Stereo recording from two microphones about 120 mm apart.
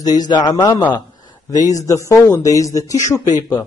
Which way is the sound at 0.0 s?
35° left (ahead or behind).